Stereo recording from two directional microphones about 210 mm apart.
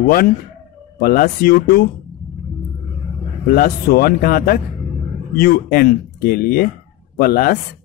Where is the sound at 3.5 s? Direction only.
45° left (ahead or behind).